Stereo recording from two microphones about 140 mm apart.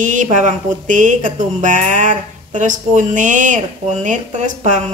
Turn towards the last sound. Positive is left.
turn(degrees=-60)  # may be behind; listen again after turning